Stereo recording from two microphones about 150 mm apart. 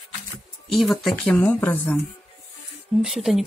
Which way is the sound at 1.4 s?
10° left (ahead or behind).